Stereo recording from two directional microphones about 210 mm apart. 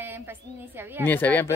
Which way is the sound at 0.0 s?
10° right (ahead or behind).